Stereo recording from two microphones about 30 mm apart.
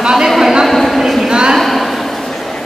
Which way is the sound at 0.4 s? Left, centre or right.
Centre.